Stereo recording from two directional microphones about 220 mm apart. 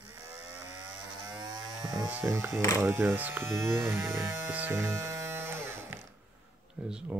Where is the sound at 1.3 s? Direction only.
20° right (ahead or behind).